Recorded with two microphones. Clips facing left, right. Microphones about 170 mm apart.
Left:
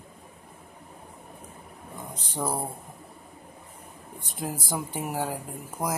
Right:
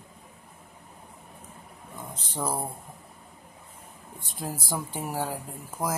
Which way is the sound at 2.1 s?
15° left (ahead or behind).